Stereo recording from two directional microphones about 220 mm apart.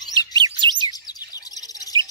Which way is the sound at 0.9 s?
15° left (ahead or behind).